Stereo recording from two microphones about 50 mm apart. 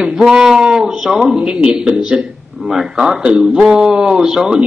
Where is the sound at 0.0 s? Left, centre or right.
Centre.